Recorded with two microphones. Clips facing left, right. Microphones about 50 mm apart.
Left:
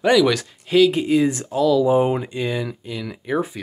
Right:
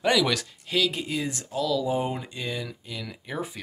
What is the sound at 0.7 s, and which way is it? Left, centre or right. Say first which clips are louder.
Speech: left 11 dB; centre.